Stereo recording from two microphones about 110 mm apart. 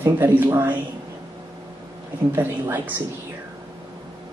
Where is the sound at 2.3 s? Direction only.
20° right (ahead or behind).